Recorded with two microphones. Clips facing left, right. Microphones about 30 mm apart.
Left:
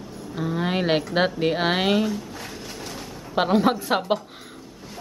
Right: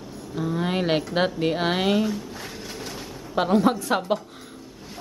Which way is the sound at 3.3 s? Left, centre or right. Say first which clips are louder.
Even; left.